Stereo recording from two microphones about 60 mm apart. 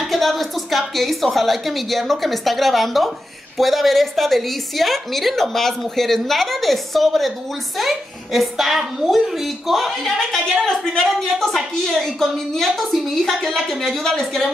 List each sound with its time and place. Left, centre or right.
0.1 s a woman's voice: centre